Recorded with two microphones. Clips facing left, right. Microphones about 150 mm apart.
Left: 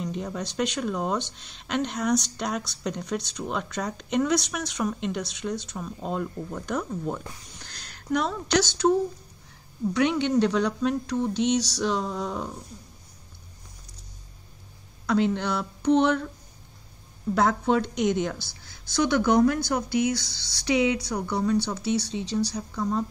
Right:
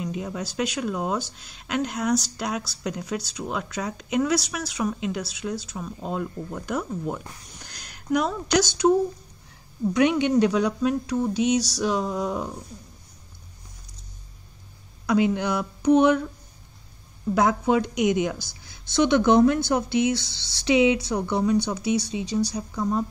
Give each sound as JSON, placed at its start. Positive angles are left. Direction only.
{"t": 0.0, "sound": "speech", "side_deg": -5}
{"t": 9.9, "sound": "speech", "side_deg": -15}
{"t": 15.0, "sound": "speech", "side_deg": -10}
{"t": 17.3, "sound": "speech", "side_deg": -10}